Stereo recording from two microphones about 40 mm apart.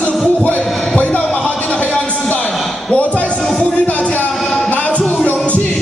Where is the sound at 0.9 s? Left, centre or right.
Left.